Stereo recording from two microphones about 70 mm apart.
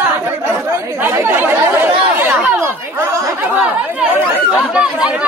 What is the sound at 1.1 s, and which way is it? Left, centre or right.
Chatter, right.